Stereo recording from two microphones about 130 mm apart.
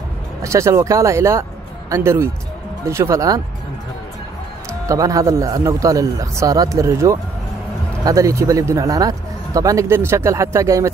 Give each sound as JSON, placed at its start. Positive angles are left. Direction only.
{"t": 0.4, "sound": "speech", "side_deg": -25}
{"t": 4.8, "sound": "speech", "side_deg": -25}